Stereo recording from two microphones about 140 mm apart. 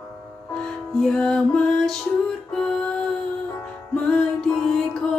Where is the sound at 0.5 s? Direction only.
5° left (ahead or behind).